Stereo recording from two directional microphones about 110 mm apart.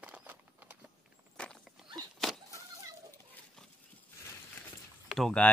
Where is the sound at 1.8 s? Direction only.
5° right (ahead or behind).